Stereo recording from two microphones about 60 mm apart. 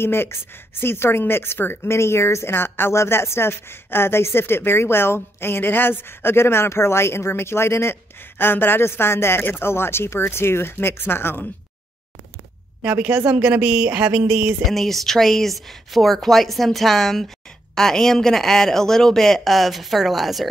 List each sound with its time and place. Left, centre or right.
0.0 s a woman's voice: left
12.8 s a woman's voice: right
14.7 s speech: centre